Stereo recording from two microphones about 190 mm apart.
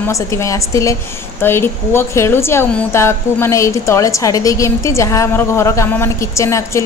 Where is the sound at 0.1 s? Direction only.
15° left (ahead or behind).